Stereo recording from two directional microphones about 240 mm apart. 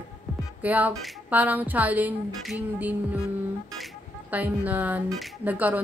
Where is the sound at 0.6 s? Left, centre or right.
Centre.